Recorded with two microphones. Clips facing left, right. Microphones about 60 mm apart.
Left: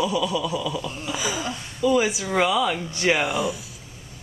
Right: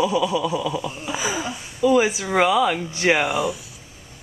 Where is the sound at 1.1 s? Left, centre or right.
Centre.